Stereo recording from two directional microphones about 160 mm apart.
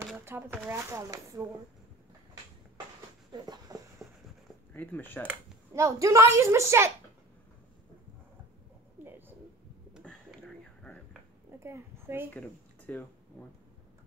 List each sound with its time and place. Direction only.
0.2 s a woman's voice: 15° right (ahead or behind)
3.3 s a sound: 25° right (ahead or behind)
4.7 s speech: 10° left (ahead or behind)
5.7 s a woman's voice: 20° right (ahead or behind)
11.6 s a child's voice: 15° right (ahead or behind)
12.4 s speech: 10° left (ahead or behind)